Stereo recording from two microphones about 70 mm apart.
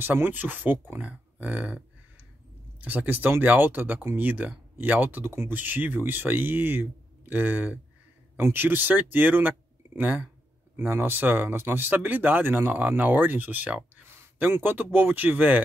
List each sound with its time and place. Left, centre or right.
0.0 s speech: right
2.8 s speech: right